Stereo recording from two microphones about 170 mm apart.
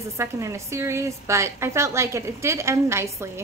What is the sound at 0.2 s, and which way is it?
A woman's voice, 15° right (ahead or behind).